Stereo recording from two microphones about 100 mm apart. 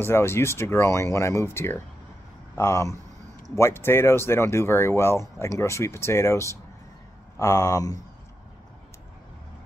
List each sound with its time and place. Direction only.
0.0 s speech: 25° left (ahead or behind)